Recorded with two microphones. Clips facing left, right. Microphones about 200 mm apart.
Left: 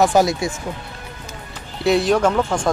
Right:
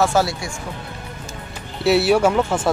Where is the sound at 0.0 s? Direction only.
15° left (ahead or behind).